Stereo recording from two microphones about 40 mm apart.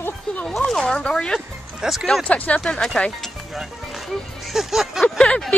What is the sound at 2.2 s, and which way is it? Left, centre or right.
Speech, left.